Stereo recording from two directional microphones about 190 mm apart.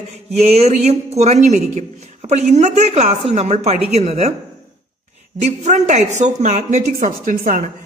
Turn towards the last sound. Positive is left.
turn(degrees=-45)  # may be behind; listen again after turning